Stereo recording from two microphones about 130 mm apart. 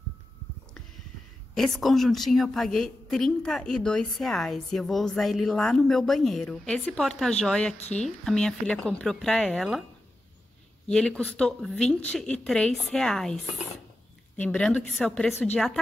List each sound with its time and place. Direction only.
1.5 s a woman's voice: 5° left (ahead or behind)
7.7 s a woman's voice: 60° left (ahead or behind)
8.2 s a woman's voice: 5° left (ahead or behind)
10.9 s a woman's voice: 5° left (ahead or behind)